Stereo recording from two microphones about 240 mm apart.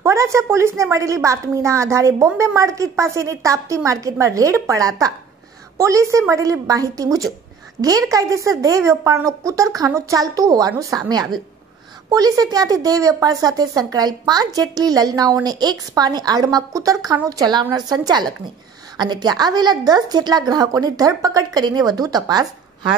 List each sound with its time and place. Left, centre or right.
0.0 s a woman's voice: centre